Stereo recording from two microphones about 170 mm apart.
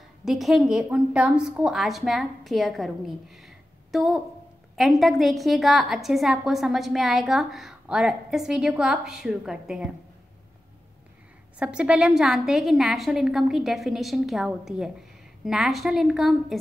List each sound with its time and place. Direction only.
0.2 s a woman's voice: centre (ahead or behind)
11.6 s a woman's voice: 5° right (ahead or behind)